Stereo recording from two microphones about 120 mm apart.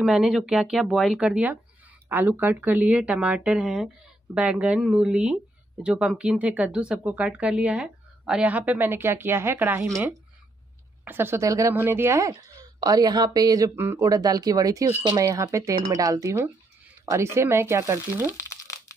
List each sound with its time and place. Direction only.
0.0 s speech: 5° right (ahead or behind); by 10.0 s 20° right (ahead or behind)
11.1 s a woman's voice: 20° right (ahead or behind)
13.7 s speech: 20° right (ahead or behind)
14.0 s speech: 30° right (ahead or behind)